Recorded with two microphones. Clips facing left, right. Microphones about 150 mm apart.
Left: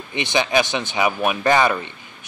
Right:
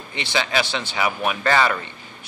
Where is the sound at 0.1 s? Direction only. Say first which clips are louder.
Left 4 dB; 20° left (ahead or behind).